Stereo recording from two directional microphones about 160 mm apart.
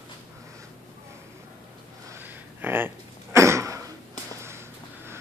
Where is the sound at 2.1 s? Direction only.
10° right (ahead or behind).